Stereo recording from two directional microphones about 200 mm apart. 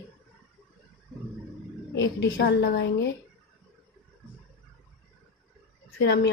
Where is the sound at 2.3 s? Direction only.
50° left (ahead or behind).